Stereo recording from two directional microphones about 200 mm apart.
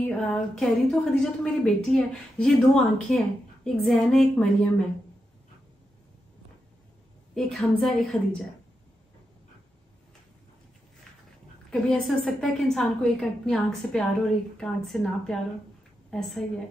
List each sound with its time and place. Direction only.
0.0 s a woman's voice: centre (ahead or behind)
7.3 s a woman's voice: 5° left (ahead or behind)
11.7 s a woman's voice: centre (ahead or behind)